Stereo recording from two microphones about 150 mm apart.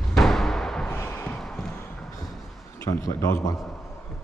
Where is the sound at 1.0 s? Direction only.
15° left (ahead or behind).